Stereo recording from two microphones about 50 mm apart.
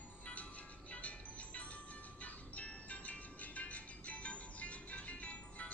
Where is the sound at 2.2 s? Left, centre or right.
Left.